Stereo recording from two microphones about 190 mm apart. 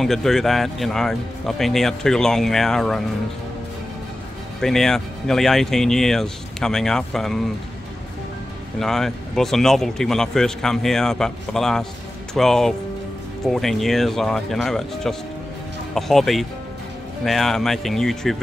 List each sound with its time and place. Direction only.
0.0 s a man's voice: centre (ahead or behind)
4.6 s a man's voice: centre (ahead or behind)
8.7 s a man's voice: centre (ahead or behind)